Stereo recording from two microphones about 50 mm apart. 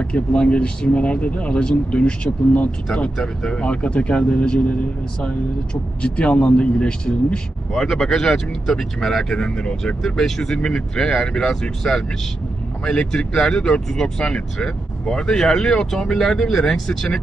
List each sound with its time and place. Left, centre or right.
0.0 s speech: left
3.2 s speech: centre
3.6 s speech: left
6.0 s speech: left
7.8 s speech: centre
10.0 s speech: centre
13.1 s speech: centre